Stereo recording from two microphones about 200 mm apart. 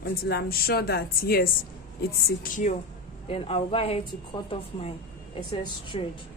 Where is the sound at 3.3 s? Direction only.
30° left (ahead or behind).